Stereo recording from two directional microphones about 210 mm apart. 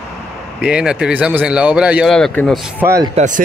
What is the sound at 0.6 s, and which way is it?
Speech, 5° right (ahead or behind).